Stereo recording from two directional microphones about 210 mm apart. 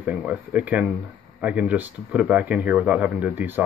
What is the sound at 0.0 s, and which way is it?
Speech, 5° right (ahead or behind).